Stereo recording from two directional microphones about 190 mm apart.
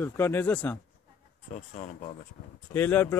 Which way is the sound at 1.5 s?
40° left (ahead or behind).